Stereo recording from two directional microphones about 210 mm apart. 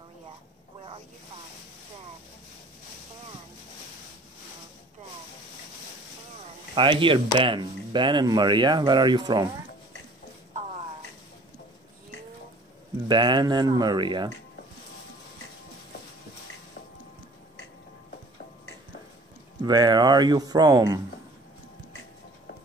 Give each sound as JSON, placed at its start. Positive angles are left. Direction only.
{"t": 6.7, "sound": "speech", "side_deg": -25}
{"t": 13.1, "sound": "speech", "side_deg": -20}
{"t": 19.6, "sound": "speech", "side_deg": -20}